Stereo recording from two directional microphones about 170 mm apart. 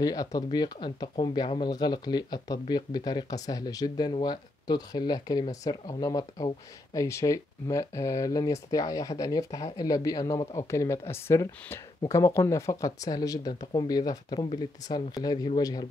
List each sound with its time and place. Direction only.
0.0 s speech: 20° left (ahead or behind)